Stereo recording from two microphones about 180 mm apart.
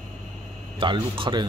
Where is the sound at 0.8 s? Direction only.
30° right (ahead or behind).